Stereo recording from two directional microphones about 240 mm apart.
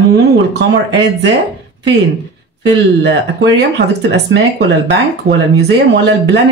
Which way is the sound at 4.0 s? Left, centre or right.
Right.